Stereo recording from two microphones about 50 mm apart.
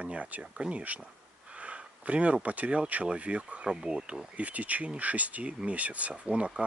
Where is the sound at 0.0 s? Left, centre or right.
Right.